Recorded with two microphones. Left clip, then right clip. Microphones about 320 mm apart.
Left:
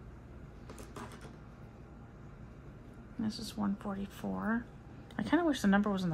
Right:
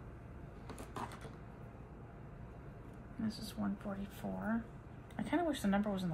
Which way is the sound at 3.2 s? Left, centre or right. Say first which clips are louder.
Left 4 dB; centre.